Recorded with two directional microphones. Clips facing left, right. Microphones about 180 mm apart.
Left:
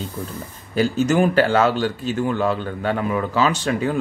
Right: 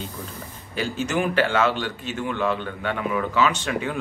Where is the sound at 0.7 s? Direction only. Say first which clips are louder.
Left 7 dB; 40° left (ahead or behind).